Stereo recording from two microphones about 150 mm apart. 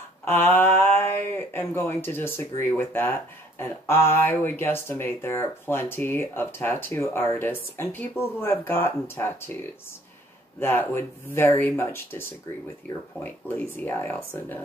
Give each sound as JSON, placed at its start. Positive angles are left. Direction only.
{"t": 0.2, "sound": "speech", "side_deg": 15}
{"t": 10.6, "sound": "speech", "side_deg": 15}